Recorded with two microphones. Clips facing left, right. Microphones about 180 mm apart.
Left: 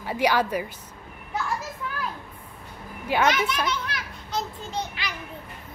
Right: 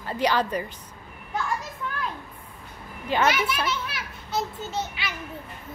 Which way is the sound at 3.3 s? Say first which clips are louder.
Left 1 dB; 5° right (ahead or behind).